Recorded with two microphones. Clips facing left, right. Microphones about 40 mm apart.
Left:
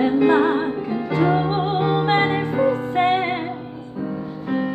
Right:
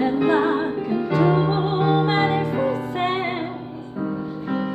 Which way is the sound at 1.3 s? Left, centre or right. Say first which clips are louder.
Even; centre.